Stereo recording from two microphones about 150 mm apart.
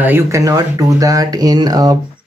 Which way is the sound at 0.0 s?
15° right (ahead or behind).